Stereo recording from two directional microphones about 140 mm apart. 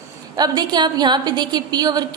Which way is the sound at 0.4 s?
30° right (ahead or behind).